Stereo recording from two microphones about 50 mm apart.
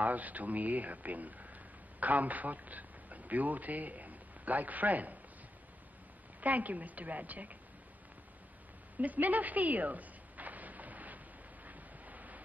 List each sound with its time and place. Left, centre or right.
0.0 s a man's voice: right
6.4 s speech: right
8.9 s a sound: right
11.6 s wind: right